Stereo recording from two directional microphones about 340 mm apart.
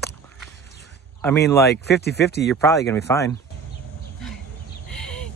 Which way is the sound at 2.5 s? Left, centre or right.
Centre.